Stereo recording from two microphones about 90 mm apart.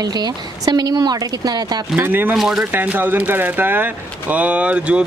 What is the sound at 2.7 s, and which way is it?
Speech, 20° right (ahead or behind).